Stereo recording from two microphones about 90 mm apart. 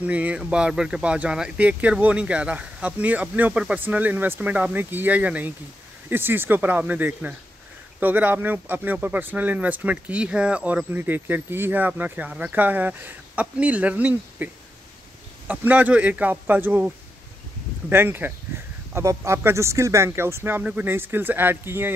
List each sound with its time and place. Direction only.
0.0 s speech: 15° right (ahead or behind)